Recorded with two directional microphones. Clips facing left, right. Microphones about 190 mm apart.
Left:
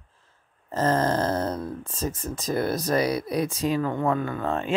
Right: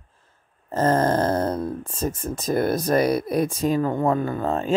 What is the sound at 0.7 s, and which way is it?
Speech, 50° right (ahead or behind).